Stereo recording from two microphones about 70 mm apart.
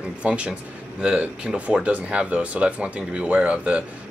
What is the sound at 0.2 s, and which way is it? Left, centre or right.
Speech, centre.